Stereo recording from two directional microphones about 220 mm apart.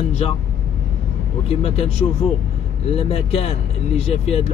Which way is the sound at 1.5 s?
30° left (ahead or behind).